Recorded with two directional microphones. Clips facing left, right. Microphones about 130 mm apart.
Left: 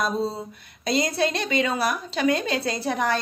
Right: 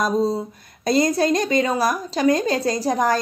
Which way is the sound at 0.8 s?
45° right (ahead or behind).